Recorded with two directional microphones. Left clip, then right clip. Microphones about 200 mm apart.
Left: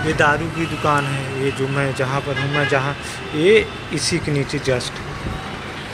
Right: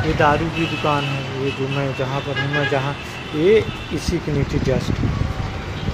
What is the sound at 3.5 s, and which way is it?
Speech, 5° right (ahead or behind).